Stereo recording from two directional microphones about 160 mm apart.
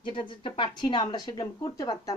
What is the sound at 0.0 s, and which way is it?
A woman's voice, 30° left (ahead or behind).